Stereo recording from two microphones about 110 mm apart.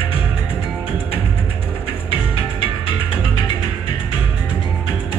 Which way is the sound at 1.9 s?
55° left (ahead or behind).